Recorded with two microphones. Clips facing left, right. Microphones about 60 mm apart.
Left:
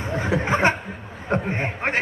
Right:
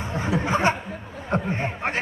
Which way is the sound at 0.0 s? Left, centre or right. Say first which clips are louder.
Left 2 dB; left.